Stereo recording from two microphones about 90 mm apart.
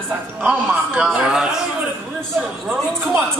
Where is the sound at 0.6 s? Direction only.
20° right (ahead or behind).